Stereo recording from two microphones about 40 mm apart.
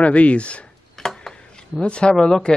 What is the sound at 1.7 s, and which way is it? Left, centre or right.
Speech, left.